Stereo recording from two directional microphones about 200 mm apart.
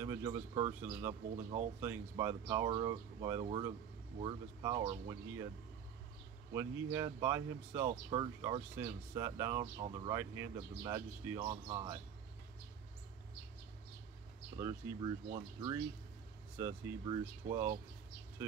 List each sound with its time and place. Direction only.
0.0 s speech: 15° right (ahead or behind)
1.3 s speech: 35° right (ahead or behind)
1.8 s speech: 15° right (ahead or behind)
6.5 s speech: 15° right (ahead or behind)
9.8 s speech: 25° right (ahead or behind)
10.1 s speech: 15° right (ahead or behind)
14.6 s speech: 20° right (ahead or behind)
16.5 s speech: 20° right (ahead or behind)